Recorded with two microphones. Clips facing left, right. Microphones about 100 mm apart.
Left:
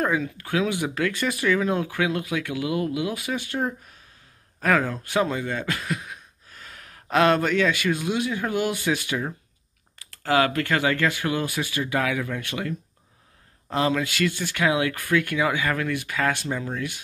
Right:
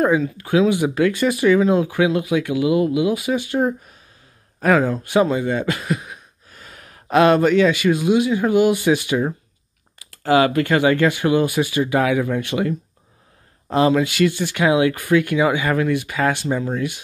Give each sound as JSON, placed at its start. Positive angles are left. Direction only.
{"t": 0.0, "sound": "speech", "side_deg": -15}